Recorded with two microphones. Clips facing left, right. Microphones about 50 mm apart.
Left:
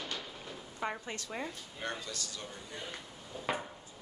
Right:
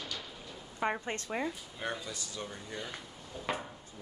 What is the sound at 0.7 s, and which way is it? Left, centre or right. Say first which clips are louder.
Speech: right 5 dB; centre.